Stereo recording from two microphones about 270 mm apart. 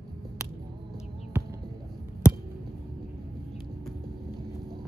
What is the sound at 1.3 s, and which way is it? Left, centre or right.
Basketball bounce, centre.